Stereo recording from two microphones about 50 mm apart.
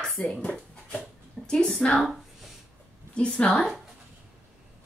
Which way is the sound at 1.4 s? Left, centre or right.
Centre.